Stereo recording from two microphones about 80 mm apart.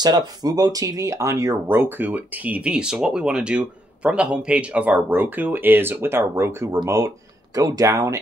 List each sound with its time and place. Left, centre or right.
0.0 s speech: right
7.5 s speech: right